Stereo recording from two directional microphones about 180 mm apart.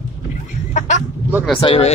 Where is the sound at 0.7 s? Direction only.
40° left (ahead or behind).